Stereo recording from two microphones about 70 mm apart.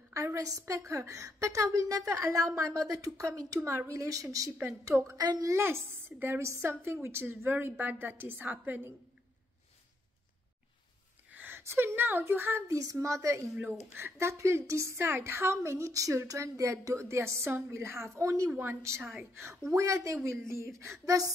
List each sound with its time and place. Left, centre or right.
0.1 s a woman's voice: right
3.6 s a woman's voice: right
5.1 s a woman's voice: right
5.4 s a woman's voice: right
11.2 s speech: right
12.6 s a woman's voice: right
13.6 s a woman's voice: right
21.0 s speech: right